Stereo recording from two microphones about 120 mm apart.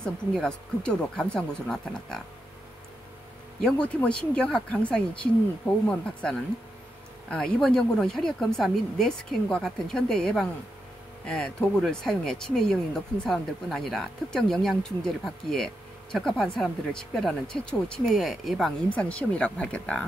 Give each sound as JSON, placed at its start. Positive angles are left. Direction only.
{"t": 0.0, "sound": "speech", "side_deg": 5}
{"t": 3.6, "sound": "speech", "side_deg": 10}
{"t": 18.9, "sound": "speech", "side_deg": 10}